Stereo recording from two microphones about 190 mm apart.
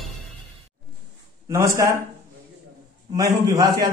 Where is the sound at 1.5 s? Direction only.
15° right (ahead or behind).